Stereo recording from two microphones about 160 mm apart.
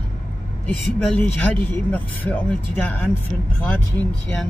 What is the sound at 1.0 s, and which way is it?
Speech, 5° left (ahead or behind).